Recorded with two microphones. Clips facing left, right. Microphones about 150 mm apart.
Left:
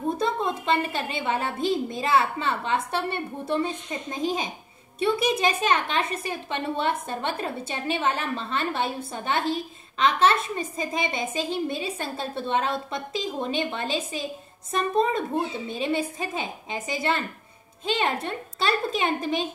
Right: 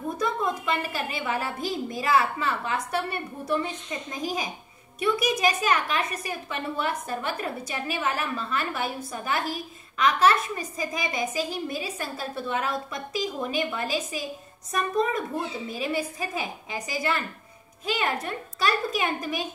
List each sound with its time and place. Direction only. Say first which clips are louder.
0.2 s a woman's voice: left 1 dB; 25° left (ahead or behind)